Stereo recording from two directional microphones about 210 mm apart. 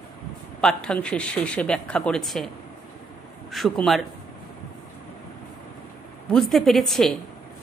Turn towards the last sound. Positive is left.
turn(degrees=0)  # may be behind; listen again after turning